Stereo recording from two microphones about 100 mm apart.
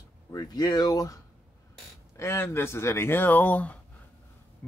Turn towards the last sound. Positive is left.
turn(degrees=15)  # may be behind; listen again after turning